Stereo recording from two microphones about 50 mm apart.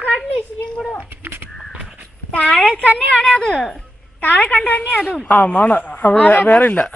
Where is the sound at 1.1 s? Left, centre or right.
Right.